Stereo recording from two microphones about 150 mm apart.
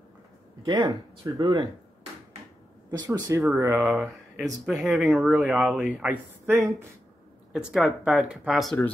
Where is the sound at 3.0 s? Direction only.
25° right (ahead or behind).